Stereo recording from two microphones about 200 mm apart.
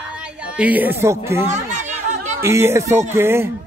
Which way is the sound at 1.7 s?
35° right (ahead or behind).